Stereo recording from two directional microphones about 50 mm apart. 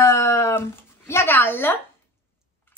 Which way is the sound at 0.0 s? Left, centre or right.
Left.